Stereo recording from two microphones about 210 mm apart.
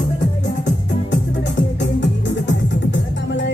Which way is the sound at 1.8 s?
60° left (ahead or behind).